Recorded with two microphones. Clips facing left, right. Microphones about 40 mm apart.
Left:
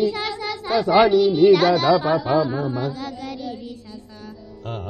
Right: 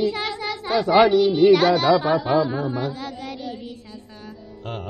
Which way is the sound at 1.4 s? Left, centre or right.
Centre.